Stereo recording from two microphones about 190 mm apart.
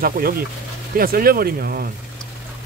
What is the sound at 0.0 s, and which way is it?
Speech, 50° right (ahead or behind).